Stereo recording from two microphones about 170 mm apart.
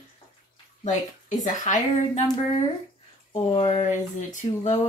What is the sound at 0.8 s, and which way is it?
A woman's voice, 50° left (ahead or behind).